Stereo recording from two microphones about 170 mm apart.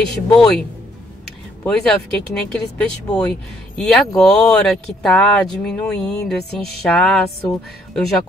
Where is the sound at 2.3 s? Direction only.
5° left (ahead or behind).